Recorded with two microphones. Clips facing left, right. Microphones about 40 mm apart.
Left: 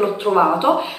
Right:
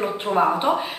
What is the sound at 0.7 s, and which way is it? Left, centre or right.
Speech, left.